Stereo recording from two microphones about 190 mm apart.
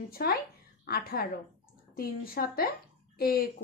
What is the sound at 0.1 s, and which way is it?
A woman's voice, 50° left (ahead or behind).